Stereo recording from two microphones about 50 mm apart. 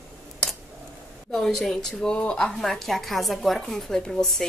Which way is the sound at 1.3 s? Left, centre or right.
Centre.